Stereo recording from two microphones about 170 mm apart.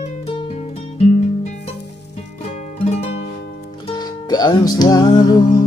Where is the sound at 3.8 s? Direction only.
25° left (ahead or behind).